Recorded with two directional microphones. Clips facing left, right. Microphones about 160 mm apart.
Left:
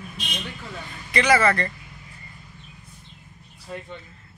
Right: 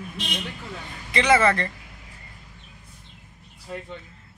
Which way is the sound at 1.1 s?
25° right (ahead or behind).